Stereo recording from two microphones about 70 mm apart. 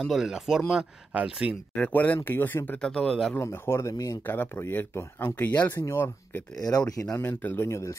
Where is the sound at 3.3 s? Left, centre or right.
Left.